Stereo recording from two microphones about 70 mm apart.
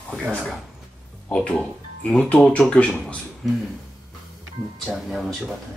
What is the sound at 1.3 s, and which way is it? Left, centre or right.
A man's voice, centre.